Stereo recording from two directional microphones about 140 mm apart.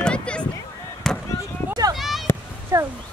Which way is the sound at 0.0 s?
5° left (ahead or behind).